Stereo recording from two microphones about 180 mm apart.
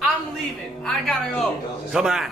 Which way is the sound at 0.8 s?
5° left (ahead or behind).